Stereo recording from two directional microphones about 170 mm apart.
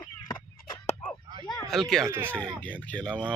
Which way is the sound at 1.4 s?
25° left (ahead or behind).